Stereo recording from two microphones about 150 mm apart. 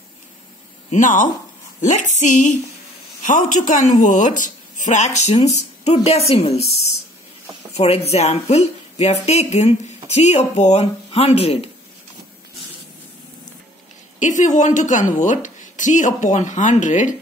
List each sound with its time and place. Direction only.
0.8 s a woman's voice: 55° left (ahead or behind)
7.7 s a woman's voice: 45° left (ahead or behind)
14.2 s a woman's voice: 55° left (ahead or behind)